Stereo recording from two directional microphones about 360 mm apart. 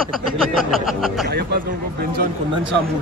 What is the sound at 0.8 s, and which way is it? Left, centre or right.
Speech, centre.